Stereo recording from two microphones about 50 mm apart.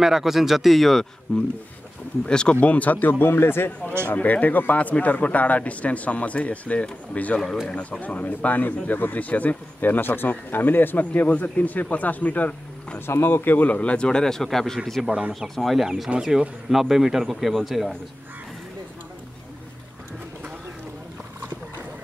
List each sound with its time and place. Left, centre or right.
0.0 s speech: centre
1.3 s speech: left
2.5 s speech: left
4.1 s speech: left
13.0 s speech: left; by 17.9 s centre